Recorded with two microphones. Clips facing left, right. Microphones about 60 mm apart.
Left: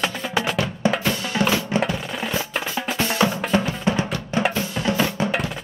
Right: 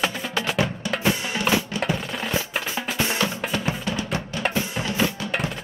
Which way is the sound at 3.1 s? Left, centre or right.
Left.